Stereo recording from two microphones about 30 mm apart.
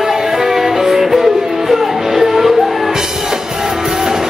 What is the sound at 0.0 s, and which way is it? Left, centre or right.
Music, centre.